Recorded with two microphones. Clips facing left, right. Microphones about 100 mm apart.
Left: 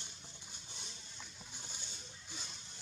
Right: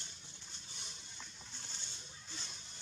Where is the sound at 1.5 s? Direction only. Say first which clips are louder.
Left 1 dB; 10° left (ahead or behind).